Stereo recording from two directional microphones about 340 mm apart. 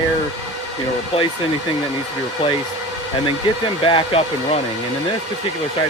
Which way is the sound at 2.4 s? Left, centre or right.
Centre.